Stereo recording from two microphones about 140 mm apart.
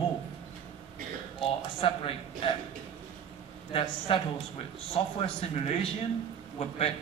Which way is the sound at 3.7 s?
40° left (ahead or behind).